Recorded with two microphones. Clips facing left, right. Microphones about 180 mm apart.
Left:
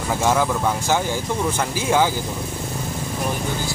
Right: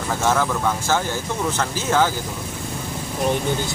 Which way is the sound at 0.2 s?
15° left (ahead or behind).